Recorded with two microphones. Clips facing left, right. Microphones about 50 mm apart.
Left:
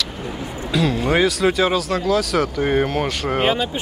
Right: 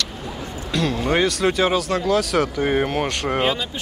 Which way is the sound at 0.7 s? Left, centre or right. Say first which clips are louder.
Left 2 dB; centre.